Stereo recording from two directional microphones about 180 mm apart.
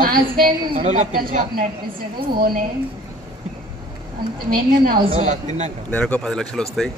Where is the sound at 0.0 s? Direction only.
50° right (ahead or behind).